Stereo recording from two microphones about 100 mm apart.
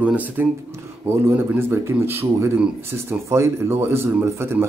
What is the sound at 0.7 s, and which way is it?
Speech, 25° right (ahead or behind).